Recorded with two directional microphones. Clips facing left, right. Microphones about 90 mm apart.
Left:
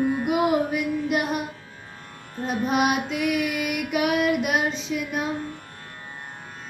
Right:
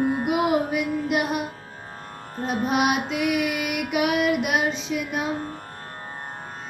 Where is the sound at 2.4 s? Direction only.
40° right (ahead or behind).